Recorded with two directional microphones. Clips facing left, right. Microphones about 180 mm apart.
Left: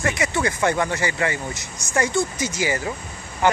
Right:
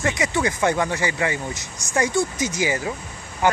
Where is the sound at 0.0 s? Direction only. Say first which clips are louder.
Even; 15° right (ahead or behind).